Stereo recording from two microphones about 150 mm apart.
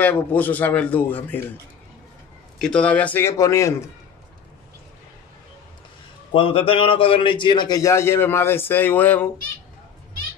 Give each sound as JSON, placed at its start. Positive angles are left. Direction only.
{"t": 0.0, "sound": "a man's voice", "side_deg": 10}
{"t": 2.6, "sound": "a man's voice", "side_deg": 5}
{"t": 6.3, "sound": "a man's voice", "side_deg": 35}